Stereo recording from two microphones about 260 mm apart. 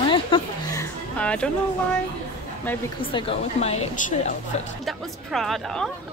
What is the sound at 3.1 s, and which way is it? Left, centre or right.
A woman's voice, left.